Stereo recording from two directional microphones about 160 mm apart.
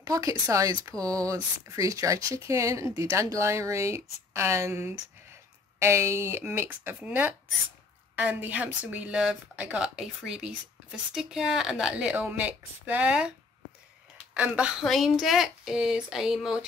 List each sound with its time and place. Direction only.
0.0 s speech: 20° right (ahead or behind); by 16.6 s 5° right (ahead or behind)